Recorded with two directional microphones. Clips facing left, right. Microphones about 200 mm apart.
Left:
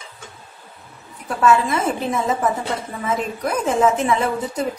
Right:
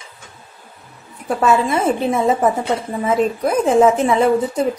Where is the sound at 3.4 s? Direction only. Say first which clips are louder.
Right 4 dB; 30° right (ahead or behind).